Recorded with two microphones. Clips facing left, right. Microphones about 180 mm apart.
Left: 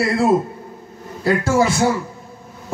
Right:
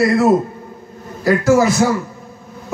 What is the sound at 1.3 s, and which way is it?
Speech, 30° left (ahead or behind).